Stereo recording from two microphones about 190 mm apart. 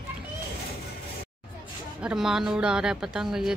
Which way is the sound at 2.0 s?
5° right (ahead or behind).